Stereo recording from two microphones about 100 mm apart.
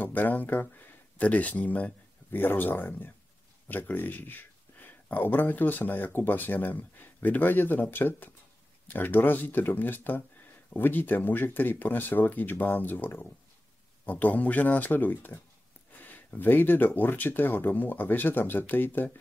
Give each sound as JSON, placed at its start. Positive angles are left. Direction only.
{"t": 0.0, "sound": "speech", "side_deg": 20}